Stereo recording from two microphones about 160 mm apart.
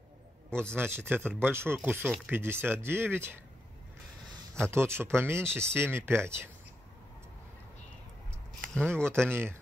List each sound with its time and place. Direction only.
0.6 s speech: 15° right (ahead or behind)
4.6 s speech: 15° right (ahead or behind)
8.9 s speech: 15° right (ahead or behind)